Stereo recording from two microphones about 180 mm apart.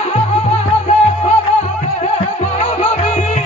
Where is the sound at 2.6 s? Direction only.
40° left (ahead or behind).